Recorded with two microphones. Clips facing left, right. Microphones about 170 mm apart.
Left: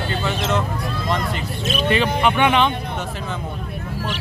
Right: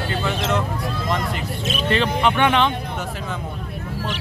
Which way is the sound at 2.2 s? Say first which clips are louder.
Even; 10° left (ahead or behind).